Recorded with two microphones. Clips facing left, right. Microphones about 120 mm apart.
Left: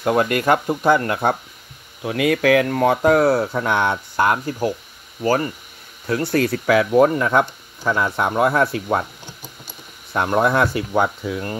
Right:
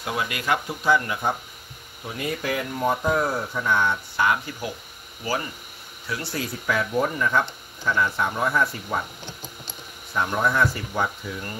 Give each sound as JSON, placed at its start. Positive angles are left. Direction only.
{"t": 0.0, "sound": "speech", "side_deg": 50}
{"t": 2.0, "sound": "speech", "side_deg": 90}
{"t": 4.2, "sound": "speech", "side_deg": 45}
{"t": 10.1, "sound": "speech", "side_deg": 60}